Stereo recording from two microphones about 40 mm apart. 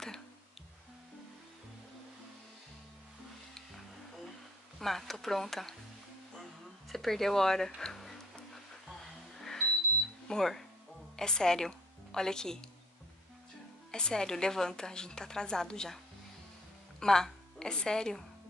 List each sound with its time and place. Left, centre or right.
4.7 s a woman's voice: centre
6.9 s a woman's voice: centre
9.0 s music: centre
10.2 s a woman's voice: centre
13.9 s a woman's voice: centre
17.0 s a woman's voice: centre